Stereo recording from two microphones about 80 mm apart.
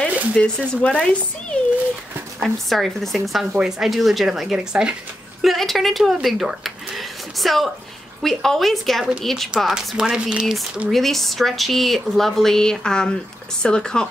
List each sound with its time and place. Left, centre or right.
0.1 s a sound: centre
0.4 s a woman's voice: centre
9.9 s speech: centre
10.9 s a woman's voice: centre